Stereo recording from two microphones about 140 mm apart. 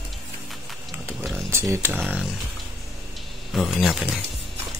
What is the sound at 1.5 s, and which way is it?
Speech, 20° right (ahead or behind).